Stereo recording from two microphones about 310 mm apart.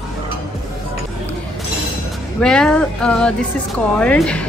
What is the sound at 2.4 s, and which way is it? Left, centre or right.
Speech, centre.